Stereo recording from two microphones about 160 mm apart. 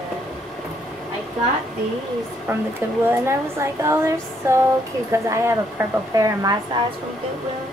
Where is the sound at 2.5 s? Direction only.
15° right (ahead or behind).